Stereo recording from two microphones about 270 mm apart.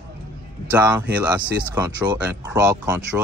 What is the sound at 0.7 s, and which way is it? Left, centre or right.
Speech, centre.